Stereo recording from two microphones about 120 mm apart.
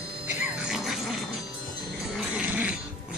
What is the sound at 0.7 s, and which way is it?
Dog, 5° right (ahead or behind).